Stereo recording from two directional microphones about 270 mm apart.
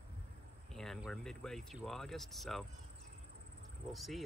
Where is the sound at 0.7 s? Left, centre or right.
Centre.